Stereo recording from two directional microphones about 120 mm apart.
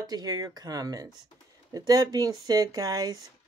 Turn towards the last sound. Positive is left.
turn(degrees=-30)  # may be behind; listen again after turning